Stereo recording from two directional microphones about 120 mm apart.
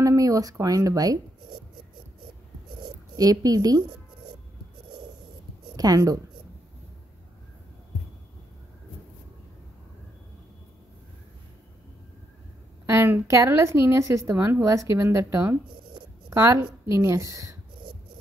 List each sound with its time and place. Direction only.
0.0 s speech: 25° right (ahead or behind)
3.2 s a woman's voice: 30° right (ahead or behind)
5.8 s a woman's voice: 30° right (ahead or behind)
12.8 s a woman's voice: 20° right (ahead or behind)